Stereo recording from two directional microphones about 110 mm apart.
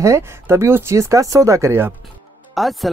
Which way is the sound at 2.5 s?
Centre (ahead or behind).